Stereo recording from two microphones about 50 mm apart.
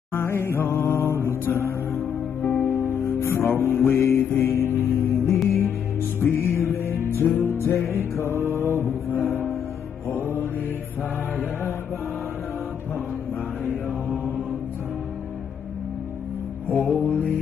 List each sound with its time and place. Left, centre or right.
0.1 s music: left
2.4 s music: left
2.7 s music: left
6.5 s music: left
7.3 s music: left
7.7 s mantra: left
16.6 s music: left